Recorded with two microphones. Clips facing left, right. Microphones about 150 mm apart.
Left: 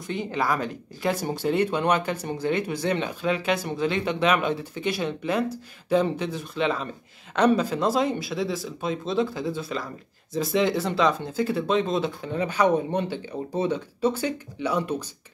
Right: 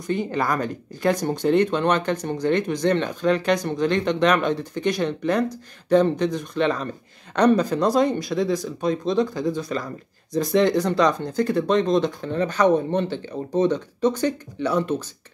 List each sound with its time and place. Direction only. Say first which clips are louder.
0.0 s speech: right 3 dB; centre (ahead or behind)